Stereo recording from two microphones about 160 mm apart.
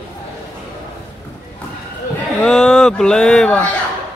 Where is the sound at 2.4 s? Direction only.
5° left (ahead or behind).